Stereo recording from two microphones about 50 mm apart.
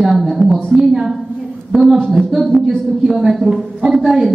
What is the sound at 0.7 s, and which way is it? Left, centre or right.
A woman's voice, centre.